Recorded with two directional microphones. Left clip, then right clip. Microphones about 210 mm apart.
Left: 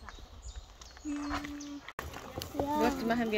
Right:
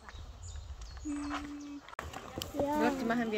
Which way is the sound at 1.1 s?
45° left (ahead or behind).